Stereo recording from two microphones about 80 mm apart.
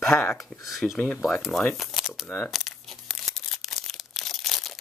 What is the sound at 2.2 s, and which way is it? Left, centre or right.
Speech, centre.